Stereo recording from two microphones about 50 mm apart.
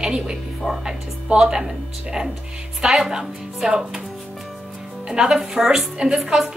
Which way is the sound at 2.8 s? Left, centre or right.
Centre.